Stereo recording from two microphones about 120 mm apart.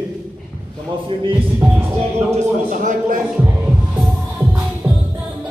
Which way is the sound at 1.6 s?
20° right (ahead or behind).